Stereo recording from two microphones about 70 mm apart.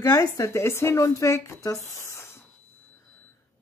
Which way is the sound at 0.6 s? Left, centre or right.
Left.